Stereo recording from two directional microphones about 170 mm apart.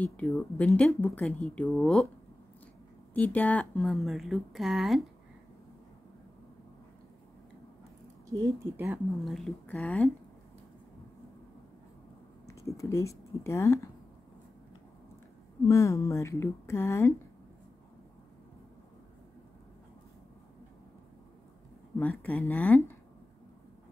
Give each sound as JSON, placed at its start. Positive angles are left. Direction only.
{"t": 0.0, "sound": "speech", "side_deg": 10}
{"t": 3.2, "sound": "speech", "side_deg": 10}
{"t": 8.3, "sound": "a woman's voice", "side_deg": -15}
{"t": 9.2, "sound": "speech", "side_deg": 0}
{"t": 12.4, "sound": "speech", "side_deg": 20}
{"t": 15.6, "sound": "speech", "side_deg": 15}
{"t": 21.9, "sound": "speech", "side_deg": 10}